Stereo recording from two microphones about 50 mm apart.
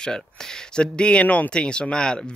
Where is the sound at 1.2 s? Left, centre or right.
Left.